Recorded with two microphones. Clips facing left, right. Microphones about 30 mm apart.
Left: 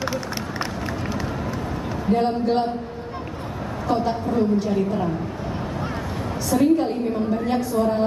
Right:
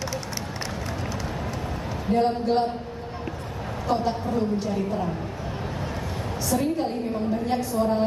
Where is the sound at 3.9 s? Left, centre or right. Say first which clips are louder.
Left 2 dB; centre.